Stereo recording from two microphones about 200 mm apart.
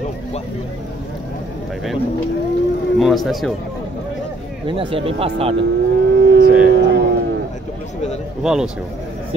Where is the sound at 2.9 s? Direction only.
Centre (ahead or behind).